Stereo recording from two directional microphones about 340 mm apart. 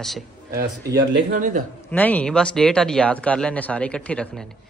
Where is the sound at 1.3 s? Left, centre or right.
Right.